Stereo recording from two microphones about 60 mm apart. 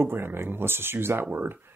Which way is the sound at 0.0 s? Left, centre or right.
Right.